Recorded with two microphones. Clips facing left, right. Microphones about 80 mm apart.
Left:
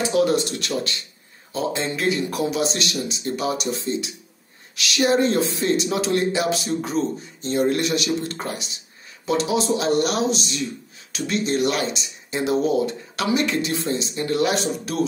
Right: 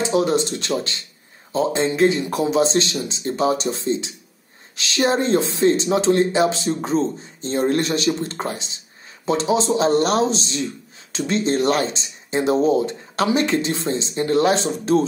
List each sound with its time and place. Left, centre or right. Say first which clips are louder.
0.0 s speech: right 1 dB; right